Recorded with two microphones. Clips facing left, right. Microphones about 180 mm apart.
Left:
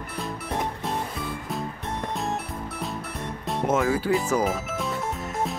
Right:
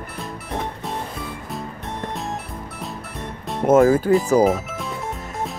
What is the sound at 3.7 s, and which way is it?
Speech, 45° right (ahead or behind).